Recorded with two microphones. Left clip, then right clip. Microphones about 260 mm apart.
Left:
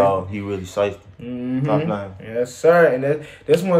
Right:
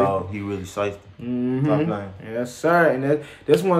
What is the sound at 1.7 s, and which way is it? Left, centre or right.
Speech, centre.